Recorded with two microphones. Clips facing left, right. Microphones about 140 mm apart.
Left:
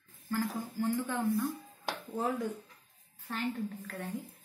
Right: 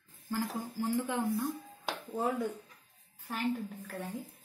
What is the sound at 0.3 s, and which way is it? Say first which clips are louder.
A woman's voice: left 1 dB; 15° right (ahead or behind).